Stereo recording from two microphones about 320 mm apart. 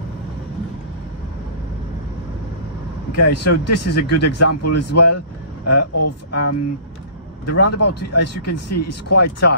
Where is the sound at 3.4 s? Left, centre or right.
Left.